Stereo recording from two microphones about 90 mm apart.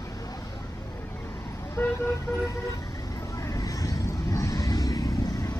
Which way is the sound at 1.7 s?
25° left (ahead or behind).